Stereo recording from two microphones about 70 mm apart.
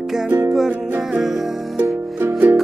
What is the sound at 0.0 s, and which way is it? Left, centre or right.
Music, centre.